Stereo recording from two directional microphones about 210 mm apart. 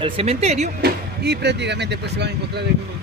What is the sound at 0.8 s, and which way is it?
Speech, 55° right (ahead or behind).